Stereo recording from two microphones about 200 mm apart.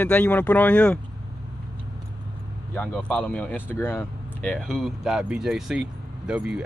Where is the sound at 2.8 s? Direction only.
5° left (ahead or behind).